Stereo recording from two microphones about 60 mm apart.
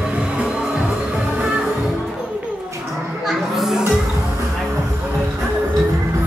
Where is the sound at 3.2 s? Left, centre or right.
Centre.